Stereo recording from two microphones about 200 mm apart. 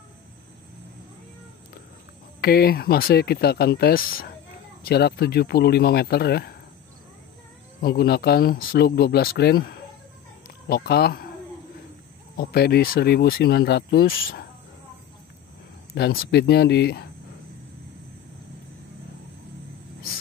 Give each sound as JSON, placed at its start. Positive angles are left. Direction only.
{"t": 2.4, "sound": "speech", "side_deg": 50}
{"t": 7.8, "sound": "speech", "side_deg": 50}
{"t": 12.4, "sound": "speech", "side_deg": 50}
{"t": 15.9, "sound": "speech", "side_deg": 50}